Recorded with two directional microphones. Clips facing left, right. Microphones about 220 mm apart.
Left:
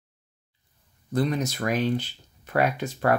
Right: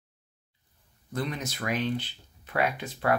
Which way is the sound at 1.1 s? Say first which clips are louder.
Left 8 dB; 40° left (ahead or behind).